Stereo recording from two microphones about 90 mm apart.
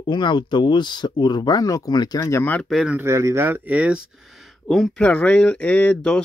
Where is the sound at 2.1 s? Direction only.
30° left (ahead or behind).